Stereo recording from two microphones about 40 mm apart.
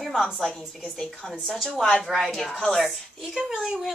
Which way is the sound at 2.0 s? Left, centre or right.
Centre.